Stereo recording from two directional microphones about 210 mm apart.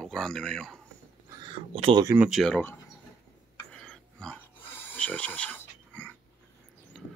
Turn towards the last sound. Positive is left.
turn(degrees=5)  # may be behind; listen again after turning